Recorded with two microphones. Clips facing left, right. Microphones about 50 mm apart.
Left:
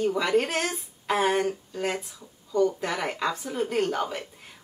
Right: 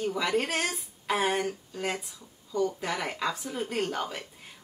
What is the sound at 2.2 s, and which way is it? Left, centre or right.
Speech, left.